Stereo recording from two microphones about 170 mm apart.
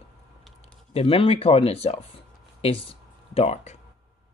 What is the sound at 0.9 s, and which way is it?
Speech, 35° left (ahead or behind).